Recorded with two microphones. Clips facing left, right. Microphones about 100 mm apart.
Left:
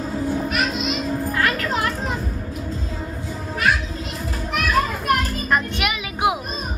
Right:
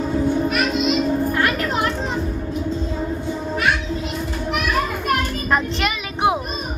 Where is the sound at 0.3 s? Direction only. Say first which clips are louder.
Right 3 dB; centre (ahead or behind).